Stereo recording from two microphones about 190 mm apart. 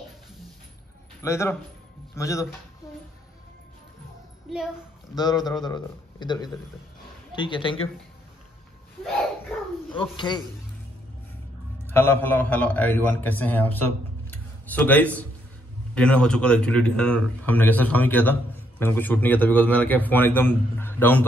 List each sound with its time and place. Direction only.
1.2 s a man's voice: 15° left (ahead or behind)
5.1 s speech: 20° left (ahead or behind)
9.9 s speech: 25° left (ahead or behind)
11.8 s a man's voice: 10° left (ahead or behind)